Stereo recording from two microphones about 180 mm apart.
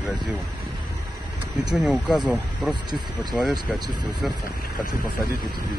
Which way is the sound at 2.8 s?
25° right (ahead or behind).